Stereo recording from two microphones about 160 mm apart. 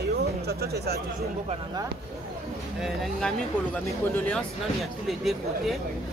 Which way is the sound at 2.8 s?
Centre (ahead or behind).